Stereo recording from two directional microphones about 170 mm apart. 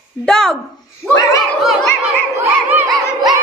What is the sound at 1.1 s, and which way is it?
Speech, 20° left (ahead or behind).